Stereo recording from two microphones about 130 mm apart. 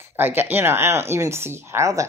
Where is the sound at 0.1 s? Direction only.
15° right (ahead or behind).